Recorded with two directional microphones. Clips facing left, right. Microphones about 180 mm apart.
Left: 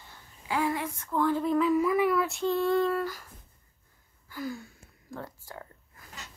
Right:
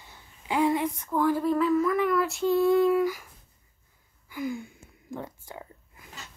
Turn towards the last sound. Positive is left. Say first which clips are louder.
# right 2 dB
turn(degrees=-20)  # may be behind; listen again after turning